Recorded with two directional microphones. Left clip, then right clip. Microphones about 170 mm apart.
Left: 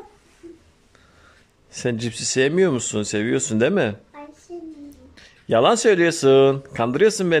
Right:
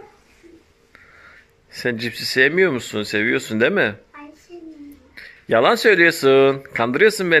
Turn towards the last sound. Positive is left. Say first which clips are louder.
# right 2 dB
turn(degrees=10)  # may be behind; listen again after turning